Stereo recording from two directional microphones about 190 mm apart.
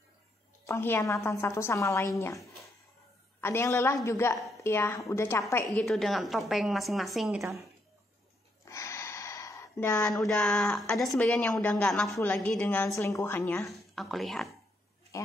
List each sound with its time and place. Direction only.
0.7 s a woman's voice: 15° left (ahead or behind)
8.6 s a sound: 15° left (ahead or behind)
10.0 s a woman's voice: 5° left (ahead or behind)
13.7 s speech: centre (ahead or behind)
15.1 s a woman's voice: 15° left (ahead or behind)